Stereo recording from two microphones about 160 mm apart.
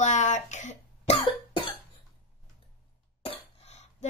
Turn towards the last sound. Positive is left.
turn(degrees=40)  # may be behind; listen again after turning